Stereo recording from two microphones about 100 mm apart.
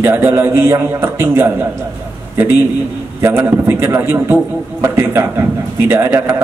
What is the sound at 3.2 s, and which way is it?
A man's voice, 25° right (ahead or behind).